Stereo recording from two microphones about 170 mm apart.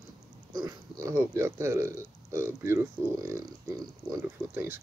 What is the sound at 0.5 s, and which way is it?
Speech, 20° right (ahead or behind).